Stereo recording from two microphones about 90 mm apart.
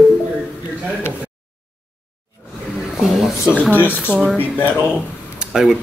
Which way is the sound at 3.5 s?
15° right (ahead or behind).